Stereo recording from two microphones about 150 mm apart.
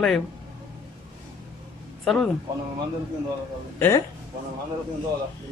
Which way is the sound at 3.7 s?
15° left (ahead or behind).